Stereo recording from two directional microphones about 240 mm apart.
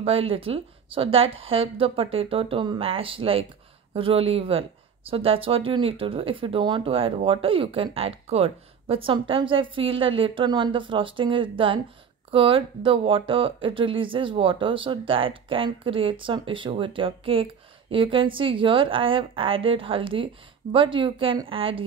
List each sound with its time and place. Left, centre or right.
0.0 s speech: right